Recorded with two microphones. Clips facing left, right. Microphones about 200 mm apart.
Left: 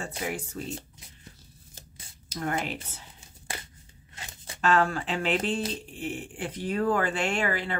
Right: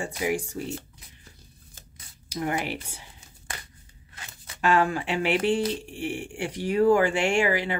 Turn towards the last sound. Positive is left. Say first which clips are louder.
# right 5 dB
turn(degrees=-15)  # may be behind; listen again after turning